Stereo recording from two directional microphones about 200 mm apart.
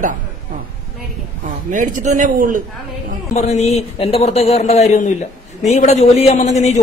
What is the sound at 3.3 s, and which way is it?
A man's voice, 35° left (ahead or behind).